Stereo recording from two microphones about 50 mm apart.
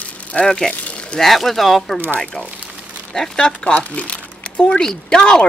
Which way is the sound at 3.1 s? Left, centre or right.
Centre.